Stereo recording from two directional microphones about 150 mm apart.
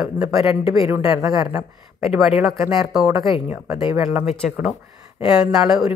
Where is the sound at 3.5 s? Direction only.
20° right (ahead or behind).